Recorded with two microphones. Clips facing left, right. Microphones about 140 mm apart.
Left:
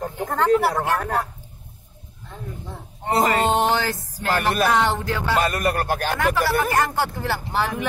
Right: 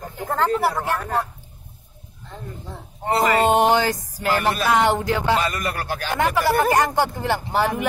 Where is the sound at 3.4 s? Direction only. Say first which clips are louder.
Right 3 dB; 15° right (ahead or behind).